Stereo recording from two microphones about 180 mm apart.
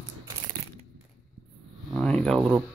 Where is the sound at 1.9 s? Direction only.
5° left (ahead or behind).